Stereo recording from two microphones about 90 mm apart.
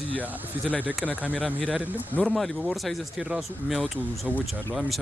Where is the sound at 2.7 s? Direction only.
Centre (ahead or behind).